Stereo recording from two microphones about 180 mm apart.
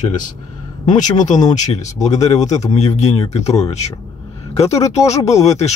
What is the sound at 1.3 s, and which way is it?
Speech, 40° left (ahead or behind).